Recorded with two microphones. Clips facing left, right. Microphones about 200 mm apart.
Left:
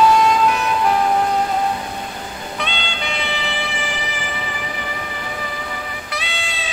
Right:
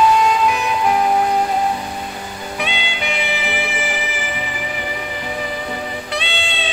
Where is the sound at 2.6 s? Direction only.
10° right (ahead or behind).